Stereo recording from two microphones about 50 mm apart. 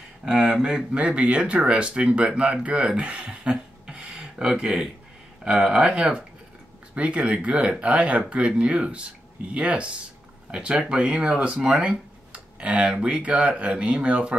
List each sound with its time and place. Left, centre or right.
0.2 s speech: centre
3.0 s a sound: right
5.4 s speech: centre